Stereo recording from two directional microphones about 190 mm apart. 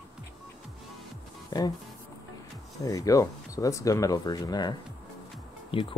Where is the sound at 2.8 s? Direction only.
15° left (ahead or behind).